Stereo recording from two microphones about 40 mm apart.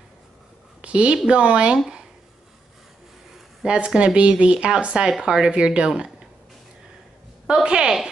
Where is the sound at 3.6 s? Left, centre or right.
Right.